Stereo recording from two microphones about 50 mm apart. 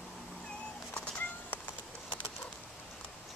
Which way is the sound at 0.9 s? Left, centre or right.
Left.